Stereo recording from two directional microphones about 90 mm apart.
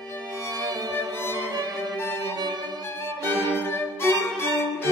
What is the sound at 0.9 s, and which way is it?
Violin, 25° left (ahead or behind).